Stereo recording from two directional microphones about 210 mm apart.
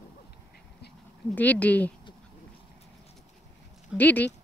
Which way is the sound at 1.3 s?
5° left (ahead or behind).